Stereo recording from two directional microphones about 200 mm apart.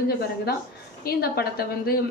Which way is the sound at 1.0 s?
50° left (ahead or behind).